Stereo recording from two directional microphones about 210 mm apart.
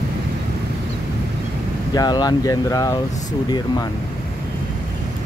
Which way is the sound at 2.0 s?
20° left (ahead or behind).